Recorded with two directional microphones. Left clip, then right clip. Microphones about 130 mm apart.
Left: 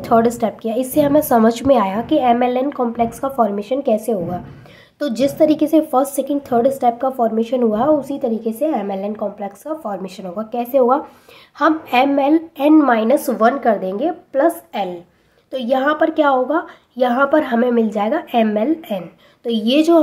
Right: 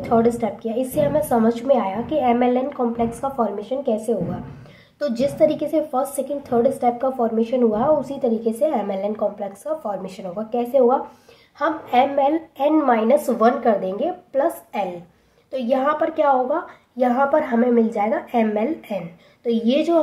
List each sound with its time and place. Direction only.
0.0 s a woman's voice: 45° left (ahead or behind); by 19.0 s 30° left (ahead or behind)
19.4 s speech: 40° left (ahead or behind)